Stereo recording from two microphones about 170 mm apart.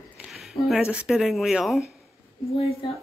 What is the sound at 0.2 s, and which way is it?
Speech, centre (ahead or behind).